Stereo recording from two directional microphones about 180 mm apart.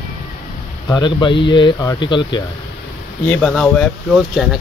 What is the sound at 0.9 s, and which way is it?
Speech, 25° left (ahead or behind).